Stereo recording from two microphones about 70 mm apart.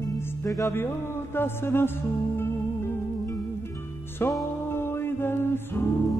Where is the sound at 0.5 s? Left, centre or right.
Left.